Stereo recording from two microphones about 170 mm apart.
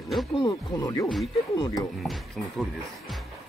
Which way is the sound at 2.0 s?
Centre (ahead or behind).